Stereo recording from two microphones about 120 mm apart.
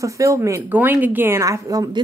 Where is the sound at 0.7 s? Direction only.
15° right (ahead or behind); by 2.0 s 30° right (ahead or behind).